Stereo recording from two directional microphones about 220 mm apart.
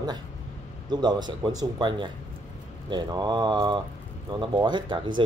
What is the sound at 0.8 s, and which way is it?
Speech, 20° right (ahead or behind).